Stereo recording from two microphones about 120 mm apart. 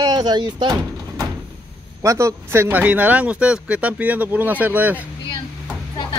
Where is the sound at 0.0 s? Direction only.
35° right (ahead or behind).